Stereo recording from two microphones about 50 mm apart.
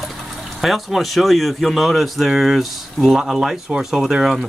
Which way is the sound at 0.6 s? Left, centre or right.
Centre.